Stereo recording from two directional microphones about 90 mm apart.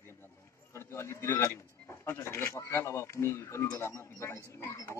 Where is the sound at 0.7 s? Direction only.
30° left (ahead or behind).